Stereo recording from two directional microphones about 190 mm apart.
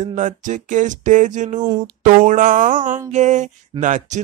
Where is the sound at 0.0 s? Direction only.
40° right (ahead or behind).